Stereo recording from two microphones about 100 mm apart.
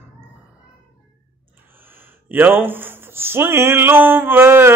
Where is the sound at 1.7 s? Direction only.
20° right (ahead or behind).